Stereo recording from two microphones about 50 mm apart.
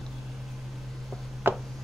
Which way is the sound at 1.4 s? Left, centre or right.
Right.